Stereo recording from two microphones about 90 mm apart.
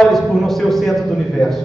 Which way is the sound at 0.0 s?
Centre (ahead or behind).